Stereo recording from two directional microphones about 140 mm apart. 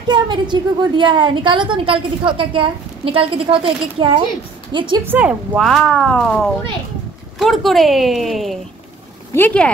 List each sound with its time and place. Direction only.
0.1 s a woman's voice: 35° right (ahead or behind)
5.0 s a woman's voice: 15° right (ahead or behind)
5.7 s speech: 5° left (ahead or behind)
9.3 s speech: 10° left (ahead or behind)